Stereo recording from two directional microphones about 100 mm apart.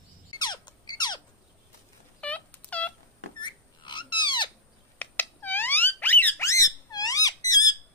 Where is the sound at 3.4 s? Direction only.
50° left (ahead or behind).